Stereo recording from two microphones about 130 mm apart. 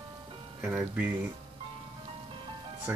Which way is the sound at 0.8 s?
15° right (ahead or behind).